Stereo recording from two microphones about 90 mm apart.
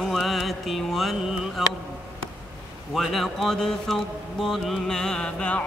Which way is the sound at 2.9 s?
Centre (ahead or behind).